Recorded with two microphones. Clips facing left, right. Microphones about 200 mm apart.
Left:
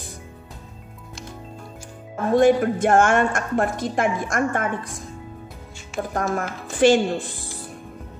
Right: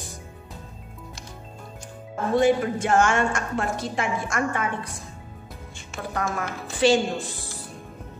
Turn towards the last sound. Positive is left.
turn(degrees=55)  # may be behind; listen again after turning